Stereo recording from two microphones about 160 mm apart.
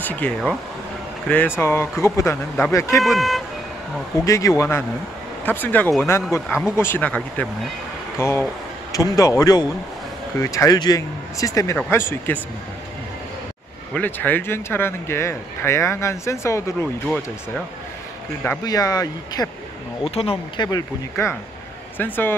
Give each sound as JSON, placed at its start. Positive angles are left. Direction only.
{"t": 0.0, "sound": "speech", "side_deg": 10}
{"t": 3.0, "sound": "speech", "side_deg": 0}
{"t": 4.2, "sound": "speech", "side_deg": 20}
{"t": 13.9, "sound": "speech", "side_deg": 10}
{"t": 18.6, "sound": "speech", "side_deg": 20}
{"t": 20.2, "sound": "speech", "side_deg": 35}
{"t": 20.6, "sound": "speech", "side_deg": 20}